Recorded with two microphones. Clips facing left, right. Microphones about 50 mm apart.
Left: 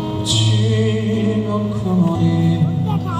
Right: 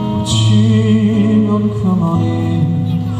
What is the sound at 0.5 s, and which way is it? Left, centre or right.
Music, right.